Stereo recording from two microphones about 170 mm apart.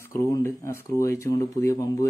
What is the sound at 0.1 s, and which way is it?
Speech, 15° left (ahead or behind).